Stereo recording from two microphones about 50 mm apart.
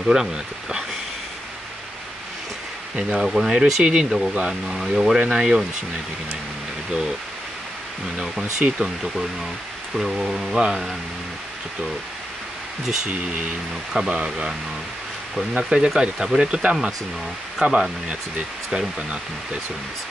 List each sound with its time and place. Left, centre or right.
0.0 s speech: centre
3.1 s speech: centre
8.2 s speech: centre
13.9 s speech: centre
15.5 s speech: centre